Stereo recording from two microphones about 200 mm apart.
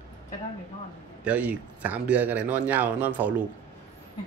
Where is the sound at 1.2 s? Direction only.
5° right (ahead or behind).